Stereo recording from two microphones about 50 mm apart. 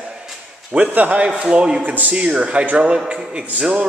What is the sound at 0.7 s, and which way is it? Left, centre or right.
Speech, right.